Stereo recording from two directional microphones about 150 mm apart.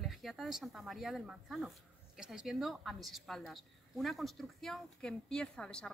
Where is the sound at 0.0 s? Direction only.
Centre (ahead or behind).